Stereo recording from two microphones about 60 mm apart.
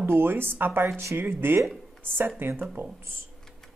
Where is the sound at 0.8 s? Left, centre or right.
Right.